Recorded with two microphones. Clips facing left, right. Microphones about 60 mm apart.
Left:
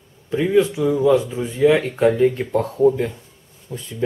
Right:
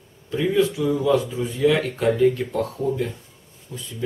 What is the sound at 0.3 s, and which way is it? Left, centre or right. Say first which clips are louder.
Speech: left 3 dB; left.